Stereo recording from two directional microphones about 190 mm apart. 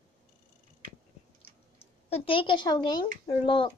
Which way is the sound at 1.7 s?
30° left (ahead or behind).